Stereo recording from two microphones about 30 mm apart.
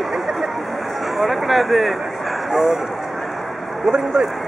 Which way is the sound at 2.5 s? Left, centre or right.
Centre.